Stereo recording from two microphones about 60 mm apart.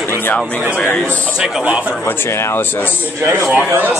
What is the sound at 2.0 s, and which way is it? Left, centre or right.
Speech, left.